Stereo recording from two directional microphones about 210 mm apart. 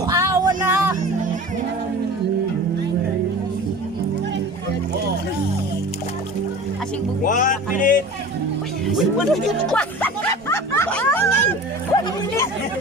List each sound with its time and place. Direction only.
0.0 s music: 15° right (ahead or behind)
7.2 s music: 40° left (ahead or behind)
8.8 s a sound: centre (ahead or behind)
11.9 s chatter: 15° left (ahead or behind)